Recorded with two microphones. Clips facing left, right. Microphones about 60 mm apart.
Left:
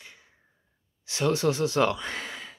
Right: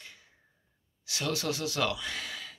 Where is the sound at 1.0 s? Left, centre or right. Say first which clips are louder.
Left 8 dB; left.